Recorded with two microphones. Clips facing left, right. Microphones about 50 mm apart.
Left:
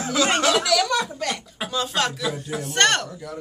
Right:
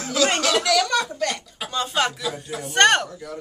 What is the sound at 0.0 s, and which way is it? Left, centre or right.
Speech, left.